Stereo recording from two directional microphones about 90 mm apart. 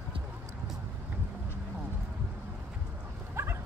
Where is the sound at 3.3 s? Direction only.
30° right (ahead or behind).